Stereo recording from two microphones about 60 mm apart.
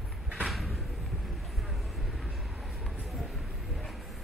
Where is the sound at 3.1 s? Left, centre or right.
Centre.